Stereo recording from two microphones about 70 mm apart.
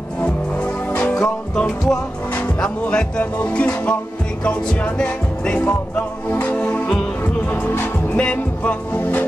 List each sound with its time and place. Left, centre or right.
0.2 s music: left
1.1 s music: centre
7.6 s music: left
8.2 s music: centre
8.9 s music: left